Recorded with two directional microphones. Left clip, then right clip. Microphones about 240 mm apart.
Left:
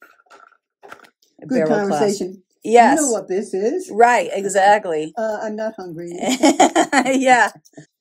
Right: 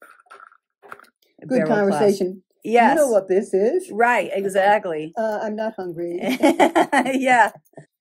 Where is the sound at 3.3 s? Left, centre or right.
Right.